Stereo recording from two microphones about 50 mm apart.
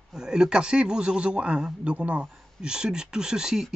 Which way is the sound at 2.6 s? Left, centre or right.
Centre.